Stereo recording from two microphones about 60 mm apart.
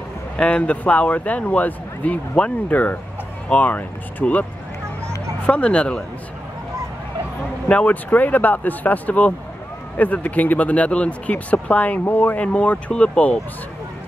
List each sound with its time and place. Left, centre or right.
0.4 s speech: centre
5.5 s speech: centre
7.6 s speech: left